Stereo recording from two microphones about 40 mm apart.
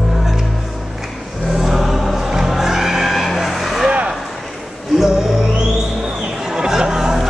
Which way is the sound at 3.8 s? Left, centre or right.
Right.